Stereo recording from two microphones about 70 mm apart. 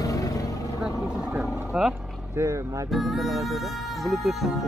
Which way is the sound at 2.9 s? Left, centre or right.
Centre.